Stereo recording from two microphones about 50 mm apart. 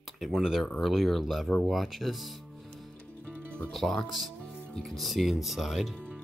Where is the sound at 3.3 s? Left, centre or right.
Right.